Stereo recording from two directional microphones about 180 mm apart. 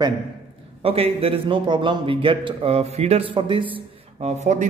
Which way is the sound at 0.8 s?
35° right (ahead or behind).